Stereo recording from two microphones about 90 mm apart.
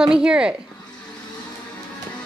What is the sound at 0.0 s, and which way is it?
Speech, 10° right (ahead or behind).